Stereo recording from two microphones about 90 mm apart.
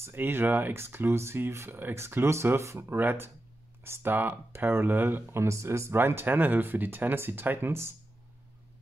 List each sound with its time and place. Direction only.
0.0 s speech: 25° right (ahead or behind)